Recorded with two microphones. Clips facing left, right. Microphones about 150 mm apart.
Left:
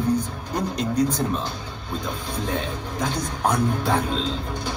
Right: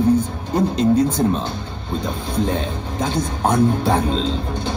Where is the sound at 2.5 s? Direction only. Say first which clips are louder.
Right 4 dB; 25° right (ahead or behind).